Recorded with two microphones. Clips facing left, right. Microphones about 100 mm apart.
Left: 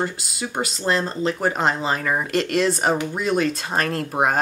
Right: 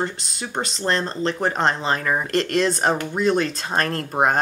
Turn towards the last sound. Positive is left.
turn(degrees=0)  # may be behind; listen again after turning